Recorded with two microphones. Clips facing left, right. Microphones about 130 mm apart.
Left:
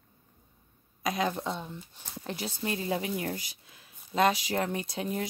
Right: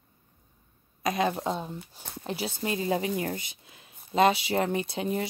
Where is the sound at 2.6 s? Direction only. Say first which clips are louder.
Right 3 dB; 5° right (ahead or behind).